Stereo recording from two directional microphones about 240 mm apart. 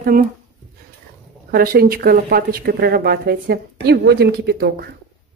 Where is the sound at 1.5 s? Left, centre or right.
Right.